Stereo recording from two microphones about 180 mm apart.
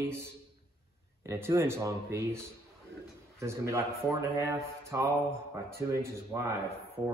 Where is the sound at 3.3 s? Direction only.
15° right (ahead or behind).